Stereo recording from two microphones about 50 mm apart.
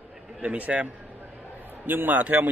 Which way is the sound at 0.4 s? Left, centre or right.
Right.